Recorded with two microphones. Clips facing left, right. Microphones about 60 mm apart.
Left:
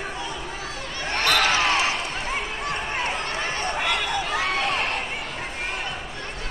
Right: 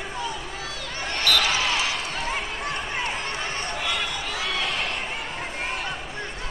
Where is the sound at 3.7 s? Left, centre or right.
Left.